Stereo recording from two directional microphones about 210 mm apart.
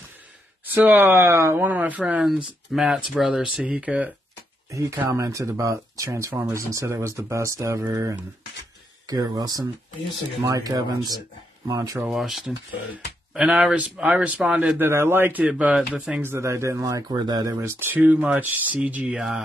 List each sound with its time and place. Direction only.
0.7 s speech: 10° right (ahead or behind)
12.1 s speech: centre (ahead or behind)